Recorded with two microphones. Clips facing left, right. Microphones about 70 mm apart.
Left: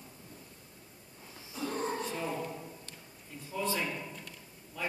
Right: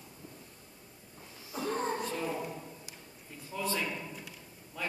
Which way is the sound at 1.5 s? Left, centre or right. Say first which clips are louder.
Right 2 dB; right.